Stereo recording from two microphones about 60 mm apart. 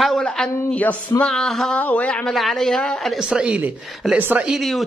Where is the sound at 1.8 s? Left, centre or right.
Left.